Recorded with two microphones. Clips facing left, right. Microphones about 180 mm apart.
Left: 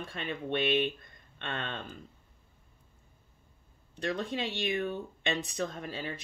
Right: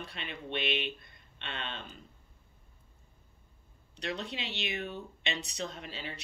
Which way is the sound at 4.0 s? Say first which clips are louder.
Left 5 dB; 50° left (ahead or behind).